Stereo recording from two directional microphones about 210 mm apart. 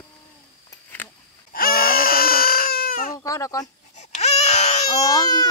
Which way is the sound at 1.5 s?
45° left (ahead or behind).